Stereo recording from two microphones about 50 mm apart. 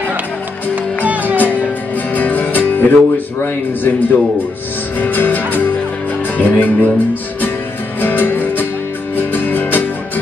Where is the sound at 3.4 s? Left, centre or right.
Left.